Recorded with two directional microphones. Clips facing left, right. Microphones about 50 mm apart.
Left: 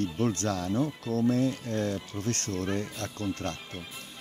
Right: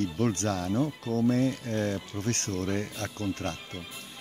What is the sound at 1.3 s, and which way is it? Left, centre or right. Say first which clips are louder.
Speech: even; right.